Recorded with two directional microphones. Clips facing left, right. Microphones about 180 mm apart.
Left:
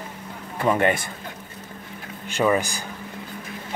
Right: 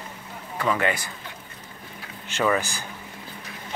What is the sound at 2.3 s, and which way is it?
Speech, 15° left (ahead or behind).